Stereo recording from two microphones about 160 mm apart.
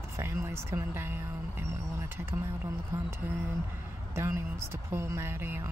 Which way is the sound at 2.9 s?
15° right (ahead or behind).